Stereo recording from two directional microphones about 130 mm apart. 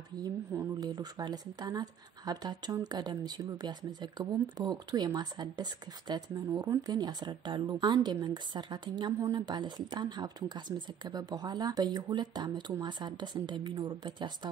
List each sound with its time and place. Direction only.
0.6 s speech: 30° right (ahead or behind)